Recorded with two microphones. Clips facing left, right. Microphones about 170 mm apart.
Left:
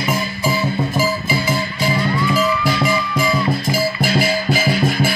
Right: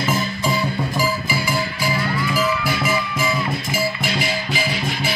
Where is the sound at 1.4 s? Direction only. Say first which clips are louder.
Left 3 dB; 25° left (ahead or behind).